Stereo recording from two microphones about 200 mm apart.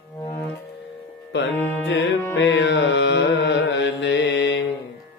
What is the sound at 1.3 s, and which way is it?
Carnatic music, 65° left (ahead or behind).